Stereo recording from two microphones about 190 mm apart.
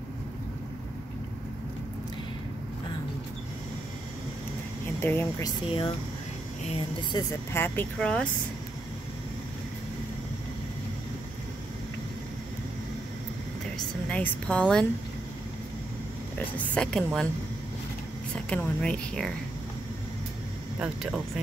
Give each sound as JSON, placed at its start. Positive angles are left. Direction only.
{"t": 5.0, "sound": "speech", "side_deg": 10}
{"t": 6.6, "sound": "speech", "side_deg": 35}
{"t": 7.2, "sound": "speech", "side_deg": 10}
{"t": 13.7, "sound": "a woman's voice", "side_deg": 5}
{"t": 16.3, "sound": "a woman's voice", "side_deg": 5}
{"t": 18.3, "sound": "a woman's voice", "side_deg": 5}
{"t": 20.8, "sound": "a woman's voice", "side_deg": 0}